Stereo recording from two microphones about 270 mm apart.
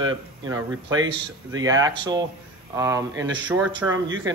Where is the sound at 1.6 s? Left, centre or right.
Centre.